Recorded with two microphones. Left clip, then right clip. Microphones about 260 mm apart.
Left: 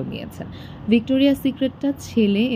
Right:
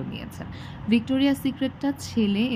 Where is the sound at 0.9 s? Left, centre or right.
Right.